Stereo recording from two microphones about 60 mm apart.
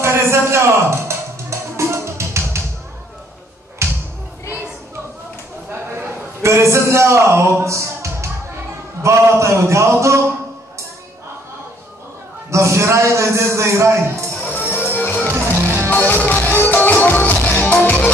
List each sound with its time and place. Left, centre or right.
0.0 s a sound: right
1.8 s music: right
3.8 s basketball bounce: right
5.7 s a sound: right
9.0 s a man's voice: right
12.4 s a man's voice: right
15.0 s music: left
15.3 s music: right
15.9 s music: left